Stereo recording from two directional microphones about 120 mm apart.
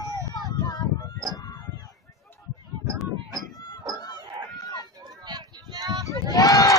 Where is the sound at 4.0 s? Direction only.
30° left (ahead or behind).